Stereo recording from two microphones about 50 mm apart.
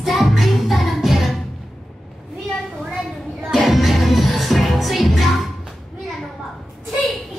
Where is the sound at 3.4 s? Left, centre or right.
Centre.